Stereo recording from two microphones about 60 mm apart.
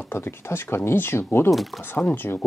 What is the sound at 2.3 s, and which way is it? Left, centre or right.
Speech, left.